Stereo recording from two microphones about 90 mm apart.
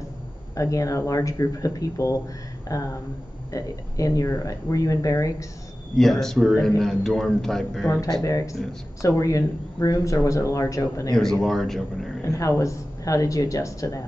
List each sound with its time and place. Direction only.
0.6 s speech: 40° left (ahead or behind)
5.9 s a man's voice: 5° left (ahead or behind)
8.1 s speech: 40° left (ahead or behind)
11.4 s a man's voice: centre (ahead or behind)
12.3 s speech: 40° left (ahead or behind)